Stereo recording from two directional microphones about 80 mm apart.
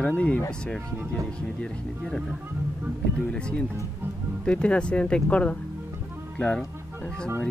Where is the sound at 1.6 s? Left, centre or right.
Centre.